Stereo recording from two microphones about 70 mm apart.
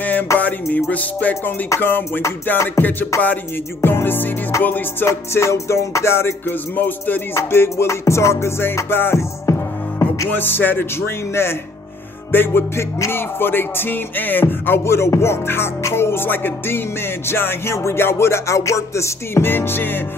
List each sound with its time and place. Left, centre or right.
0.0 s music: left
5.0 s music: left
7.3 s music: left
9.5 s music: left
10.3 s music: left